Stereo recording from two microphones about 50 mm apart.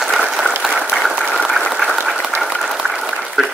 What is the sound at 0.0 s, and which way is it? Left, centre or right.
Applause, centre.